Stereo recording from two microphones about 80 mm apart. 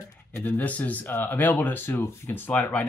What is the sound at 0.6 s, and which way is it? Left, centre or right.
Speech, centre.